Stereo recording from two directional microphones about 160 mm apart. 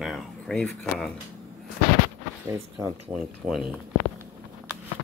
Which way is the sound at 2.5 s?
20° right (ahead or behind).